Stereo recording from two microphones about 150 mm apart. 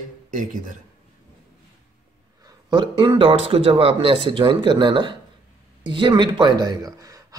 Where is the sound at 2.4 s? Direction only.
30° right (ahead or behind).